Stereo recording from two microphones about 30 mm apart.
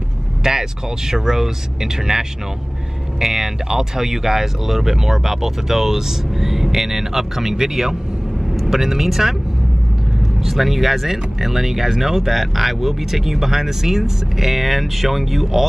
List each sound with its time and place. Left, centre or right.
0.4 s speech: centre
10.4 s speech: centre